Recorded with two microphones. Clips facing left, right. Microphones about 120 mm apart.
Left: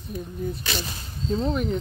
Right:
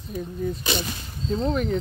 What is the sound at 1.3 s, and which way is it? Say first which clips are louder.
Speech: right 1 dB; centre (ahead or behind).